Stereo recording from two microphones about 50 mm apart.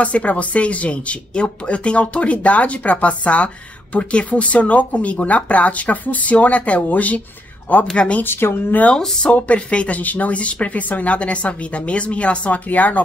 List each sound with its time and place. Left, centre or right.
0.0 s speech: left
8.2 s speech: left
8.9 s speech: centre
9.3 s speech: left